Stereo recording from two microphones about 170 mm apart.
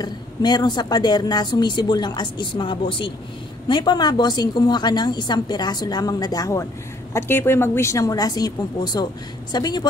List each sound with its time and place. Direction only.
0.0 s a woman's voice: 25° left (ahead or behind)